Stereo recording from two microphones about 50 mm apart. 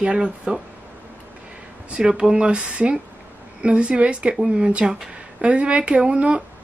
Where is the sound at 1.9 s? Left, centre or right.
Centre.